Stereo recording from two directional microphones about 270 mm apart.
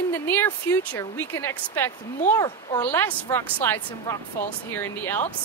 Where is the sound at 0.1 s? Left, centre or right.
Centre.